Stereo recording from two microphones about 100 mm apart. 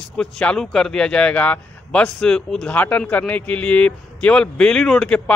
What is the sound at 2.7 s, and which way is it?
A man's voice, 15° left (ahead or behind).